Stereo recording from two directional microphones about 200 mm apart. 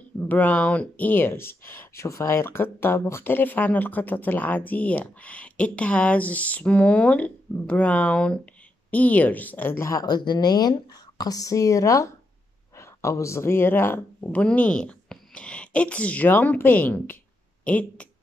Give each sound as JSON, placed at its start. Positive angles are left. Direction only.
{"t": 0.2, "sound": "speech", "side_deg": 10}